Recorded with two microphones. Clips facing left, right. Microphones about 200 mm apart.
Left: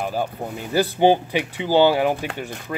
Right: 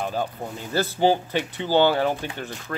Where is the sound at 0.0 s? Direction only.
10° left (ahead or behind).